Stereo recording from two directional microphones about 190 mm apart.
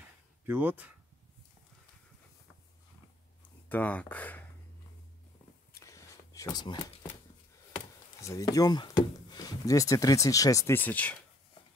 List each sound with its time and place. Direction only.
0.5 s speech: 10° right (ahead or behind)
3.6 s speech: 10° left (ahead or behind)
5.8 s a sound: 15° left (ahead or behind)
8.2 s speech: 15° left (ahead or behind)